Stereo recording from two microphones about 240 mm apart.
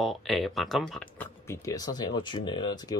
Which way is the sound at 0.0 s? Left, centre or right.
Centre.